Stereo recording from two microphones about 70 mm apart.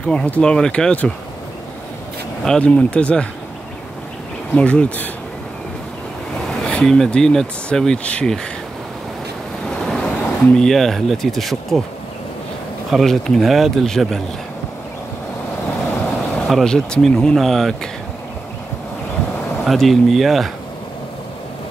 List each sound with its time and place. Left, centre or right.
0.0 s speech: centre
2.4 s speech: centre
4.6 s speech: centre
6.6 s a sound: centre
7.1 s speech: centre
9.7 s speech: centre
12.9 s speech: centre
16.4 s speech: centre
19.6 s speech: centre